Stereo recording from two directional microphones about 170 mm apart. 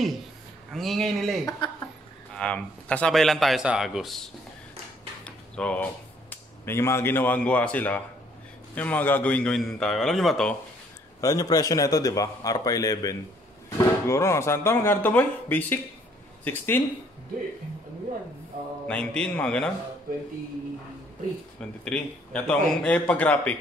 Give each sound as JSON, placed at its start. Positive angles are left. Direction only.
{"t": 0.7, "sound": "a man's voice", "side_deg": 0}
{"t": 1.6, "sound": "speech", "side_deg": 25}
{"t": 2.3, "sound": "a man's voice", "side_deg": 5}
{"t": 5.2, "sound": "a sound", "side_deg": 5}
{"t": 6.3, "sound": "a man's voice", "side_deg": 15}
{"t": 11.1, "sound": "a man's voice", "side_deg": 20}
{"t": 18.9, "sound": "a man's voice", "side_deg": 5}
{"t": 21.5, "sound": "speech", "side_deg": 5}